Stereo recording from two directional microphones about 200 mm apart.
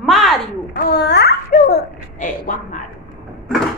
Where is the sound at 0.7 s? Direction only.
55° left (ahead or behind).